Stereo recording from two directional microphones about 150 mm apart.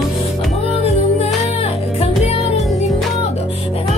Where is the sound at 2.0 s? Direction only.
45° left (ahead or behind).